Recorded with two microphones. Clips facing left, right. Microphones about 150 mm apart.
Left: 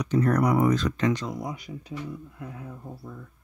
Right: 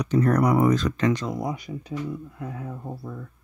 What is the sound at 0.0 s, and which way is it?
Speech, 45° right (ahead or behind).